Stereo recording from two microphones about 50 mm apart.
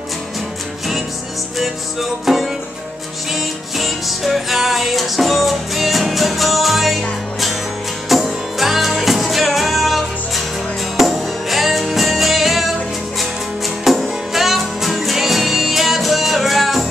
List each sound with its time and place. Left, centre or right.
1.6 s music: centre
13.8 s music: centre